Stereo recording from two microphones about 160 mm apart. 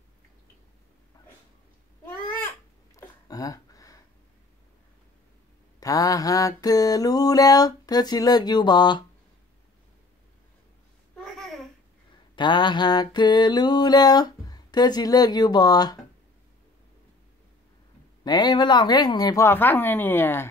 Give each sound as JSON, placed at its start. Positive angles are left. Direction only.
{"t": 2.0, "sound": "babbling", "side_deg": 10}
{"t": 3.0, "sound": "a sound", "side_deg": 20}
{"t": 5.8, "sound": "mantra", "side_deg": 20}
{"t": 11.2, "sound": "babbling", "side_deg": 0}
{"t": 12.4, "sound": "mantra", "side_deg": 30}
{"t": 18.2, "sound": "mantra", "side_deg": 25}